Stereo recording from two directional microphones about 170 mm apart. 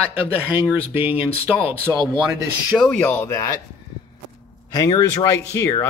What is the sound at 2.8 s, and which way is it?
Speech, 10° left (ahead or behind).